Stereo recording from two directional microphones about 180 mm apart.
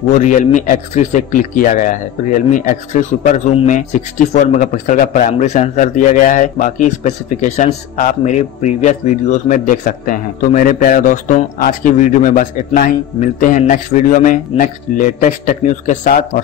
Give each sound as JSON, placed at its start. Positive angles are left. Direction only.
{"t": 0.1, "sound": "speech", "side_deg": 45}